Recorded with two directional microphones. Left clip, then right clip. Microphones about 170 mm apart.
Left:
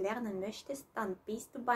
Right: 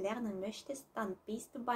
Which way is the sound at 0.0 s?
10° left (ahead or behind).